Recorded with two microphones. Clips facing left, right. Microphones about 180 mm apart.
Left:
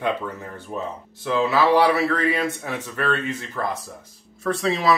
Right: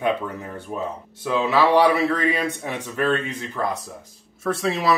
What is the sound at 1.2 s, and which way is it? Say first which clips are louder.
Speech: even; 15° right (ahead or behind).